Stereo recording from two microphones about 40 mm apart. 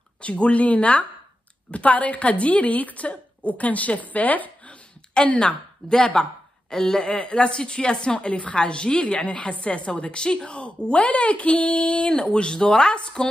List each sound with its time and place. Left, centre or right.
0.2 s speech: left
4.6 s a sound: left
6.7 s a woman's voice: centre